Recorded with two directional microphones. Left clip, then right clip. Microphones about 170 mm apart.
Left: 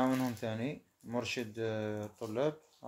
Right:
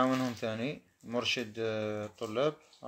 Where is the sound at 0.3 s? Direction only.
20° right (ahead or behind).